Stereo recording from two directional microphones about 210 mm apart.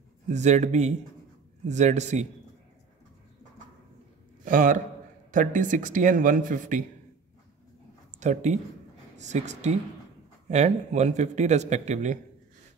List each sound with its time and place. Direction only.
0.3 s a man's voice: 35° right (ahead or behind)
4.5 s a man's voice: 40° right (ahead or behind)
8.2 s a man's voice: 35° right (ahead or behind)